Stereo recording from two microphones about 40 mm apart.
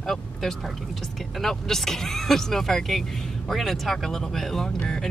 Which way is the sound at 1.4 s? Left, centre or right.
Centre.